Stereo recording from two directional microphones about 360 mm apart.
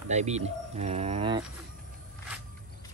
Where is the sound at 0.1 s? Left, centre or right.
Centre.